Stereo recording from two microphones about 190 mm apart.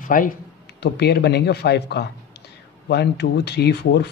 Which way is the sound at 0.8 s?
60° left (ahead or behind).